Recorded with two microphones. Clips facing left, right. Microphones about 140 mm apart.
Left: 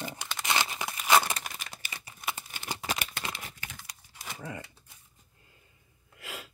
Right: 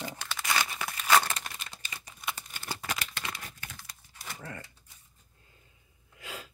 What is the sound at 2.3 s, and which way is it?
Crumpling, 15° left (ahead or behind).